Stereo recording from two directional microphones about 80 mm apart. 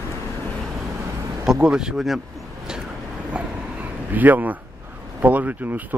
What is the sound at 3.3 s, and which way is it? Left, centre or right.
Vehicle, centre.